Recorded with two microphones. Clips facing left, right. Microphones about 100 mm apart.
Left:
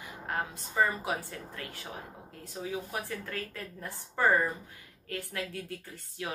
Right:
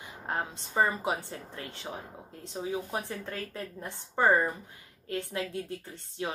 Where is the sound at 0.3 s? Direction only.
25° right (ahead or behind).